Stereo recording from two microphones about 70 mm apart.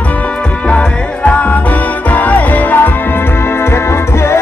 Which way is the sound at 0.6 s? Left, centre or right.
Centre.